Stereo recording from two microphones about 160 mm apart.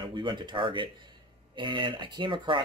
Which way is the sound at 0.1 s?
30° right (ahead or behind).